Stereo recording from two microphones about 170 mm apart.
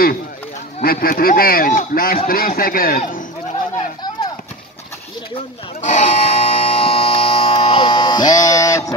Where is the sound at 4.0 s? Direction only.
25° left (ahead or behind).